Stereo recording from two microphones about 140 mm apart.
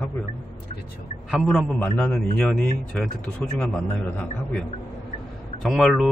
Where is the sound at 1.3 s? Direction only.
5° right (ahead or behind).